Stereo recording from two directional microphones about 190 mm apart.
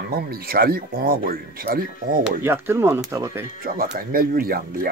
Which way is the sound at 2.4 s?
10° right (ahead or behind).